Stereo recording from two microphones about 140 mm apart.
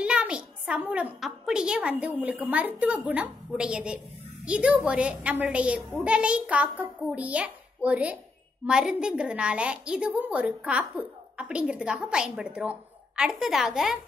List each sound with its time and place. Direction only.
0.0 s a woman's voice: 10° right (ahead or behind)